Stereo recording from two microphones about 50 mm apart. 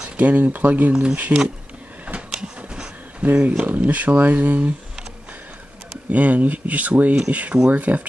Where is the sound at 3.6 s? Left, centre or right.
Right.